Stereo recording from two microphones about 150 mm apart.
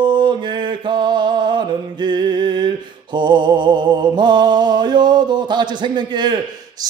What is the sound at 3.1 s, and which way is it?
Music, 30° right (ahead or behind).